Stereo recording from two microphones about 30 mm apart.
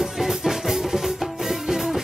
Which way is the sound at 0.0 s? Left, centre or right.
Centre.